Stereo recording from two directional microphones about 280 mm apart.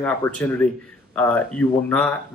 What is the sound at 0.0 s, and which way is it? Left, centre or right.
Speech, centre.